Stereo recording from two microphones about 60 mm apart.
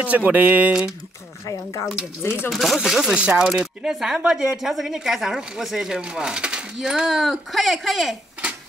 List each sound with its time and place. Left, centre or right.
0.0 s speech: right
1.4 s speech: left
2.5 s speech: centre